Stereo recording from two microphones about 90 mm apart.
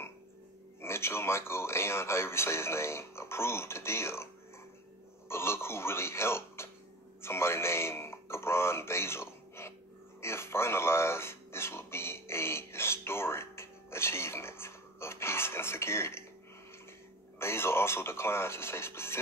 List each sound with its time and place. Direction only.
0.7 s speech: 30° left (ahead or behind)
5.3 s speech: 30° left (ahead or behind)
10.2 s a sound: 30° left (ahead or behind)
17.4 s speech: 30° left (ahead or behind)